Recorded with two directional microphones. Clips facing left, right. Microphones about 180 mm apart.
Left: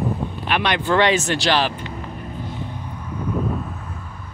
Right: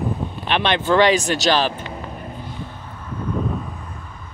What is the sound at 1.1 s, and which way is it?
Speech, 15° right (ahead or behind).